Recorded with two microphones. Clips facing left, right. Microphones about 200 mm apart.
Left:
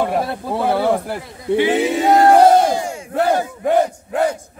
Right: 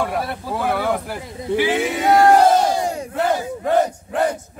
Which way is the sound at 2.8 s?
35° right (ahead or behind).